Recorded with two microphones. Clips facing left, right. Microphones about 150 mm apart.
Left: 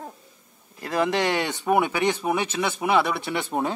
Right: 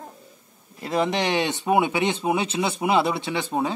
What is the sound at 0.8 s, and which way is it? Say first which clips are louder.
A man's voice: even; 20° right (ahead or behind).